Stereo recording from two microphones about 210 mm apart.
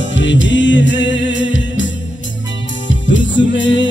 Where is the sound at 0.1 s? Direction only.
60° left (ahead or behind).